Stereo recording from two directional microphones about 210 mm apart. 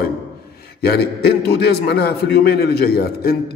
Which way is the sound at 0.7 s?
50° left (ahead or behind).